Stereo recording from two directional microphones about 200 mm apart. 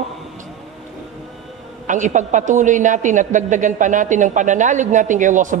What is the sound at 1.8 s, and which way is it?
A woman's voice, 40° right (ahead or behind).